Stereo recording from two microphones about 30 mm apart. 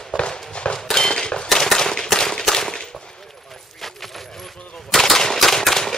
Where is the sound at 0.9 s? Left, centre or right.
Centre.